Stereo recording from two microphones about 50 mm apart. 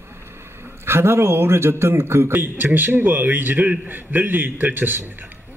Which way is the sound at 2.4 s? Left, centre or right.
Right.